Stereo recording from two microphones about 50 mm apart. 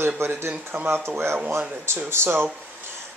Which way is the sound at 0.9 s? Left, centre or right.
Right.